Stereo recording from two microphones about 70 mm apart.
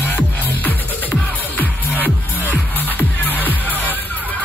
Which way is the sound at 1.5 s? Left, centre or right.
Left.